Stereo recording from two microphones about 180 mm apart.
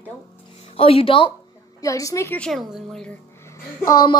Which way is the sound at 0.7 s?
30° left (ahead or behind).